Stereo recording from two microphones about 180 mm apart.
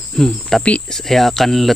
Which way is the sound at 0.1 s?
Centre (ahead or behind).